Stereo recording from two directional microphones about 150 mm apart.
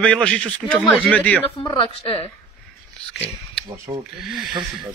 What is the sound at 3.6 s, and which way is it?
Speech, 20° right (ahead or behind).